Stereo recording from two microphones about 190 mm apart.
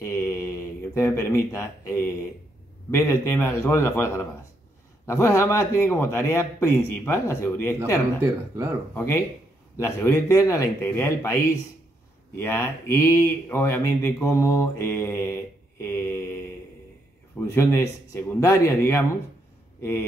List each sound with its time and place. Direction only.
0.0 s a sound: 15° left (ahead or behind)
2.9 s speech: 15° left (ahead or behind)
17.4 s speech: 15° left (ahead or behind)